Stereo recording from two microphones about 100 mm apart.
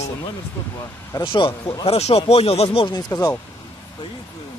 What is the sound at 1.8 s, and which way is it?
Speech, 90° left.